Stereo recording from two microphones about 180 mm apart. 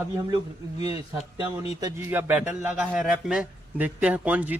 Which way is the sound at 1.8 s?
20° right (ahead or behind).